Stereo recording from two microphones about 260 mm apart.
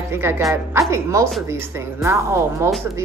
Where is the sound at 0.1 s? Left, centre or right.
Centre.